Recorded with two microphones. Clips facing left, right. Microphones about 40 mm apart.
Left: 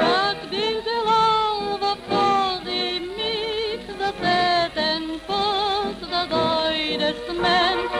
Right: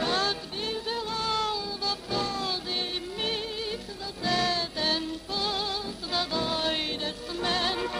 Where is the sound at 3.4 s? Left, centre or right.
Left.